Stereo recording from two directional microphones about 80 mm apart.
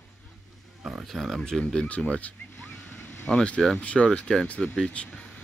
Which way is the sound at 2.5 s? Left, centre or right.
Left.